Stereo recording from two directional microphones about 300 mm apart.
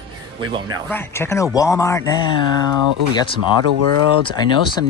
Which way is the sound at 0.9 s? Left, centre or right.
Centre.